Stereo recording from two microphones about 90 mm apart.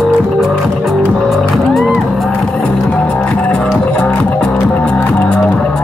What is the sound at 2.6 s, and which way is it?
Music, 15° left (ahead or behind).